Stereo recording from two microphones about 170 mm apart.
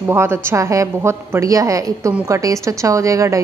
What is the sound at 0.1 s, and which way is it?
A woman's voice, 15° right (ahead or behind).